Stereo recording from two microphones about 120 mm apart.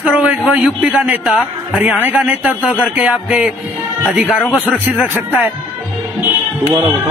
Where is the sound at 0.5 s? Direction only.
15° right (ahead or behind).